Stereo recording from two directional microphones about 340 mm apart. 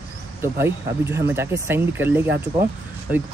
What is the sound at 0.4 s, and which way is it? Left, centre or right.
Speech, centre.